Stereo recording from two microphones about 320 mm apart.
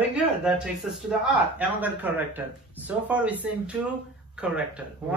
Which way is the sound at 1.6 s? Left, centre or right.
Centre.